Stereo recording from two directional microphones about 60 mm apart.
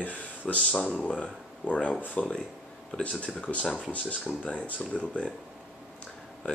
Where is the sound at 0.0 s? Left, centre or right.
Left.